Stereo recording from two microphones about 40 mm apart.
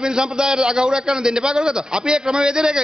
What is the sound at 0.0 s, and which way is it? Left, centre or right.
A man's voice, centre.